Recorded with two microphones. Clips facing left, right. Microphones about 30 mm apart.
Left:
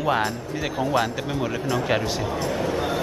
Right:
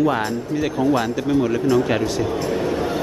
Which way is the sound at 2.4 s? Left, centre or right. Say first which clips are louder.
Right 3 dB; centre.